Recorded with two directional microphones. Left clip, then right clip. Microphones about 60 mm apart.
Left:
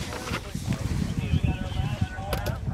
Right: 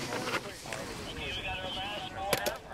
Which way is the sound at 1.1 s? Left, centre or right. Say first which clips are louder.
Left 2 dB; right.